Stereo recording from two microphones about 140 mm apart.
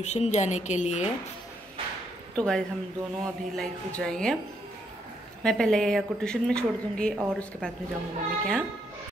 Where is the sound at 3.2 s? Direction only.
5° left (ahead or behind).